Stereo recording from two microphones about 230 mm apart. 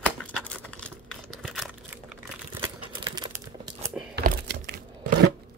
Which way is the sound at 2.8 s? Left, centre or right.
Right.